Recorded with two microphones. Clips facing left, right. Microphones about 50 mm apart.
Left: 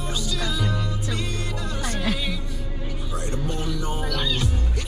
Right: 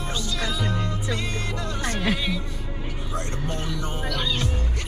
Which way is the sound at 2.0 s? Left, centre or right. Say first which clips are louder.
Right 2 dB; centre.